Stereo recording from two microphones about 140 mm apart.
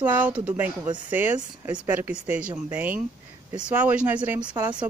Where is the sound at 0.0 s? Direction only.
10° right (ahead or behind).